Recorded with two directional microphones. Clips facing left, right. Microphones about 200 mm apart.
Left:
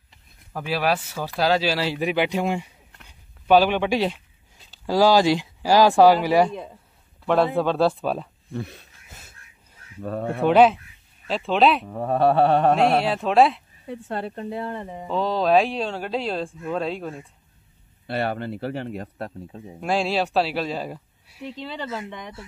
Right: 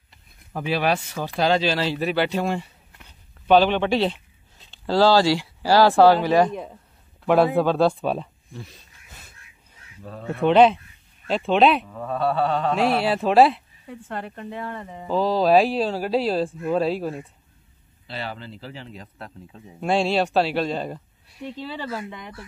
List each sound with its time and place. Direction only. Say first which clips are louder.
0.1 s speech: right 1 dB; centre (ahead or behind)
6.5 s speech: right 2 dB; 10° right (ahead or behind)
8.5 s speech: left 8 dB; 60° left (ahead or behind)
9.9 s speech: left 5 dB; 60° left (ahead or behind)
10.4 s speech: right 1 dB; 5° left (ahead or behind)
11.8 s speech: left 5 dB; 40° left (ahead or behind)
12.2 s speech: left 5 dB; 55° left (ahead or behind)
12.8 s speech: left 1 dB; centre (ahead or behind)
13.8 s speech: left 3 dB; 30° left (ahead or behind)
15.0 s speech: right 2 dB; centre (ahead or behind)
18.0 s speech: left 8 dB; 55° left (ahead or behind)
19.8 s speech: right 2 dB; centre (ahead or behind)